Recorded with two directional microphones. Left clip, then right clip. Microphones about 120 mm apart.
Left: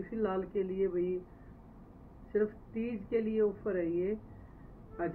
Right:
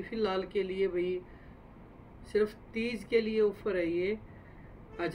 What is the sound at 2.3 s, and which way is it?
Speech, 25° right (ahead or behind).